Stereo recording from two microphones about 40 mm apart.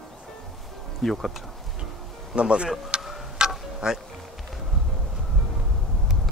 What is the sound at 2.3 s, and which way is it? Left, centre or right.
Speech, right.